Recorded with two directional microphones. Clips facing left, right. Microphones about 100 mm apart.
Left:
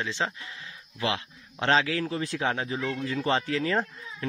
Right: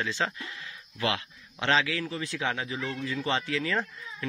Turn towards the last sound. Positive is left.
turn(degrees=35)  # may be behind; listen again after turning